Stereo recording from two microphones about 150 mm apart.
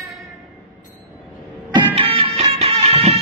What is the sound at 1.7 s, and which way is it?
Music, 35° right (ahead or behind).